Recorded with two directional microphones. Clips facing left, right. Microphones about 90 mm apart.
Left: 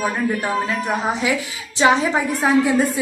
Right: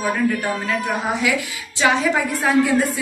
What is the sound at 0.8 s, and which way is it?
A woman's voice, 25° left (ahead or behind).